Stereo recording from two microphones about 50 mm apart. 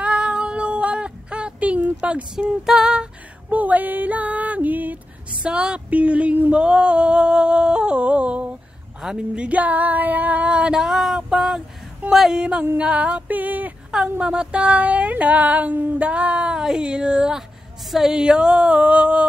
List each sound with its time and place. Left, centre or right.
0.0 s female singing: right
2.0 s speech: right
2.6 s speech: centre
3.4 s music: right
5.3 s speech: centre
11.1 s a sound: centre
12.1 s speech: centre
12.7 s a sound: right
13.9 s speech: centre